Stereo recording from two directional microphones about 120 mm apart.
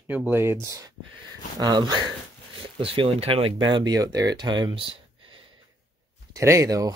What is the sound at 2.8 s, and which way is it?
Speech, 50° right (ahead or behind).